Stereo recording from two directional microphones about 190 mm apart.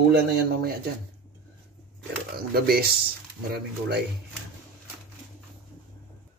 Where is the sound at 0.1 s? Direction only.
55° right (ahead or behind).